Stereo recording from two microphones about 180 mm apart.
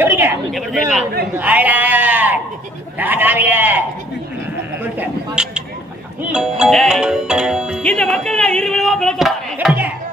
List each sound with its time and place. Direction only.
0.0 s a sound: 10° right (ahead or behind)
0.5 s music: centre (ahead or behind)
1.3 s speech: 10° right (ahead or behind)
4.9 s music: 5° right (ahead or behind)